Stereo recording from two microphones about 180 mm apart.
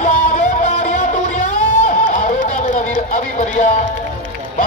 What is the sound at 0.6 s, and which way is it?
Music, 45° left (ahead or behind).